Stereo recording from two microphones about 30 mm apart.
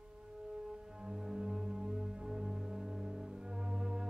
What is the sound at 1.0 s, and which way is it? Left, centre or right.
Music, right.